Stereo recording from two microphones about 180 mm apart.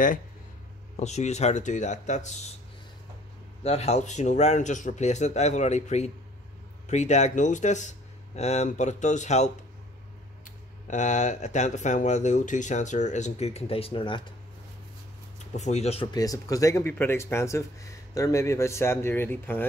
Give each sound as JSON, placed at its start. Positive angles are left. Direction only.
{"t": 0.9, "sound": "speech", "side_deg": 40}
{"t": 3.6, "sound": "speech", "side_deg": 35}
{"t": 15.3, "sound": "speech", "side_deg": 40}
{"t": 16.1, "sound": "speech", "side_deg": 20}